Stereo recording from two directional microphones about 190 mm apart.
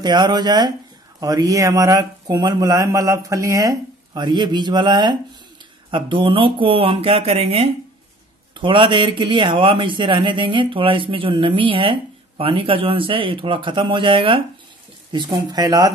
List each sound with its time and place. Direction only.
0.0 s a man's voice: 20° right (ahead or behind)